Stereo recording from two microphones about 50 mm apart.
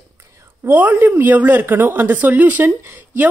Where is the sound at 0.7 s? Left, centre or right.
Right.